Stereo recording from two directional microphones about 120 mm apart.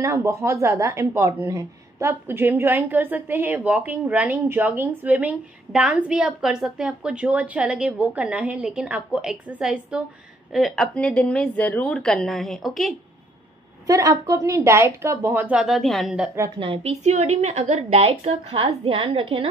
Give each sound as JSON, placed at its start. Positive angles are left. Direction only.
{"t": 0.0, "sound": "a woman's voice", "side_deg": -25}
{"t": 13.8, "sound": "a woman's voice", "side_deg": -30}
{"t": 16.5, "sound": "a woman's voice", "side_deg": -45}
{"t": 16.8, "sound": "a woman's voice", "side_deg": -70}